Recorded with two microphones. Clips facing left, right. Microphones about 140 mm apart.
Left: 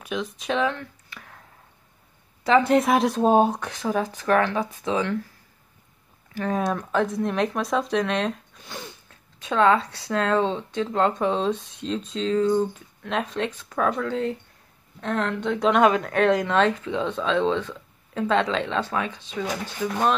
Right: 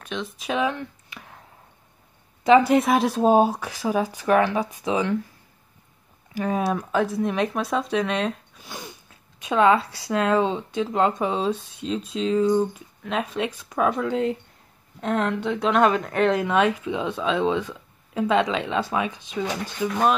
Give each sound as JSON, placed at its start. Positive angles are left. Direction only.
{"t": 0.0, "sound": "speech", "side_deg": 0}
{"t": 2.6, "sound": "speech", "side_deg": 0}
{"t": 6.3, "sound": "speech", "side_deg": -10}
{"t": 15.4, "sound": "speech", "side_deg": 0}